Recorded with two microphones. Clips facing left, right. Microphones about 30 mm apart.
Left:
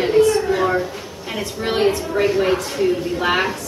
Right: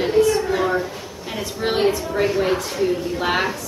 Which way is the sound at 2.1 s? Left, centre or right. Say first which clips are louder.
Left 2 dB; centre.